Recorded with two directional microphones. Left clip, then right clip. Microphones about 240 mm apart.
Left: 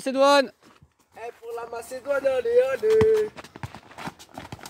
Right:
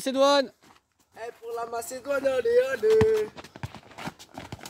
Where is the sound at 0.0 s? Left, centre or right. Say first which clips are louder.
Left 3 dB; centre.